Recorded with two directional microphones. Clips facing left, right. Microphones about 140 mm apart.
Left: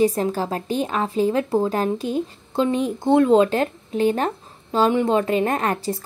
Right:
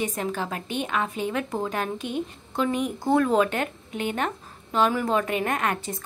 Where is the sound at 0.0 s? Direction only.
35° left (ahead or behind).